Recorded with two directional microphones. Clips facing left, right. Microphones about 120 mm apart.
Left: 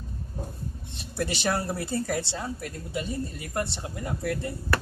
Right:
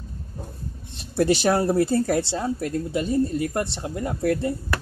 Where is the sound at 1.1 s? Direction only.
40° right (ahead or behind).